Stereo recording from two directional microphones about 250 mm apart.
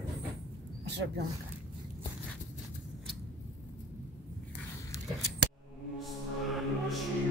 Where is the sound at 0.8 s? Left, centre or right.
Right.